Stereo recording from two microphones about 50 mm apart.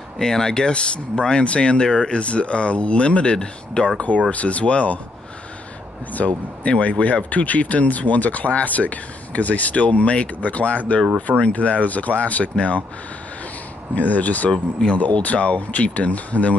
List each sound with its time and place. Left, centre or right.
0.2 s speech: centre
6.1 s speech: left
13.9 s speech: left